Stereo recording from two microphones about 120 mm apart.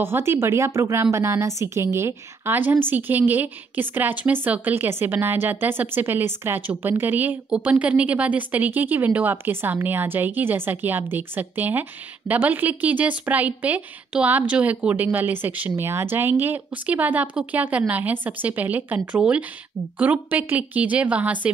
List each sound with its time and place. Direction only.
0.0 s a woman's voice: 20° right (ahead or behind)